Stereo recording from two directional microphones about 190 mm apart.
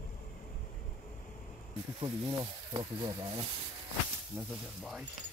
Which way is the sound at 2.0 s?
25° right (ahead or behind).